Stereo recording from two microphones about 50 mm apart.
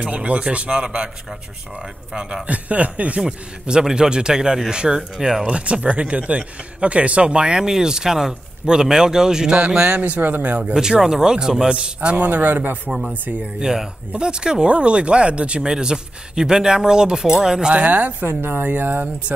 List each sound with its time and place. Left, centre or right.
0.0 s speech: right
2.4 s speech: right
3.2 s speech: centre
9.8 s speech: right
10.2 s a man's voice: right
10.7 s speech: centre
12.2 s a man's voice: right
13.6 s a man's voice: centre; by 19.0 s right